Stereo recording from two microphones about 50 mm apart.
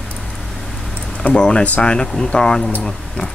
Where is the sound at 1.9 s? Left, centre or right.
Centre.